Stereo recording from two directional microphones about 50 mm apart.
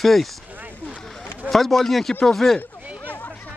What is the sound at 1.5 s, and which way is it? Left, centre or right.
Speech, centre.